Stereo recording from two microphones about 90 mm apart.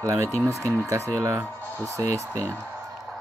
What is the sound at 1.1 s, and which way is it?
Speech, 30° right (ahead or behind).